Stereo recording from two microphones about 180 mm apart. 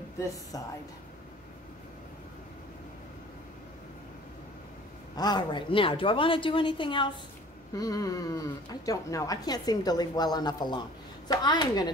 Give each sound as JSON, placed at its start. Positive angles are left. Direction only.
{"t": 5.1, "sound": "speech", "side_deg": 20}